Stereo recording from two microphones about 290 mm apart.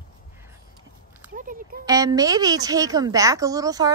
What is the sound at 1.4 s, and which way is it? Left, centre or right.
Speech, right.